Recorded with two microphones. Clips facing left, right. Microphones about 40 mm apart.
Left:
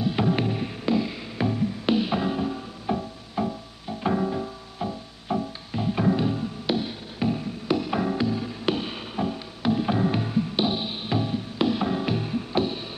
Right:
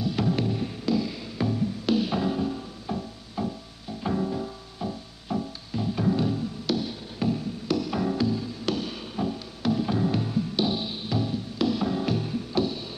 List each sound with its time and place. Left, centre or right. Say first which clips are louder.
0.0 s music: left 2 dB; left